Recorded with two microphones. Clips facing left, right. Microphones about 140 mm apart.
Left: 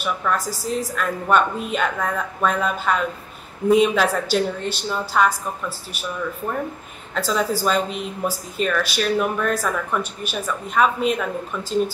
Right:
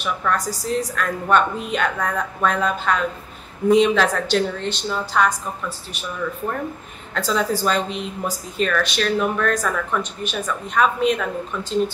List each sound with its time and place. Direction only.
0.0 s a woman's voice: 5° left (ahead or behind)
7.2 s a woman's voice: 5° left (ahead or behind)